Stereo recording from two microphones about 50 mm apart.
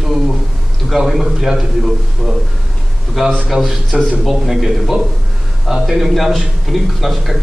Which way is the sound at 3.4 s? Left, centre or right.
Centre.